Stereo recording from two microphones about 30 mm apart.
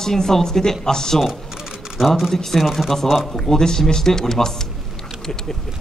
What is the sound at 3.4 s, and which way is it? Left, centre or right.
Speech, centre.